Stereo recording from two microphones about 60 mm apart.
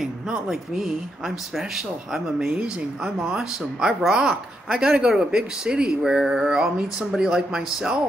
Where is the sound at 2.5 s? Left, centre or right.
Centre.